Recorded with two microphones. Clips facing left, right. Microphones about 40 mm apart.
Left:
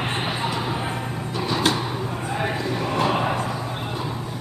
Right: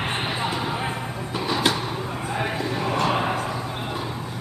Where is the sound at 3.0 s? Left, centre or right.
Centre.